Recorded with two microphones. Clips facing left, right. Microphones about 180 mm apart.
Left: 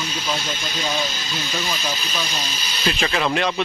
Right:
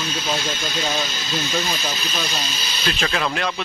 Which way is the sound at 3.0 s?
5° left (ahead or behind).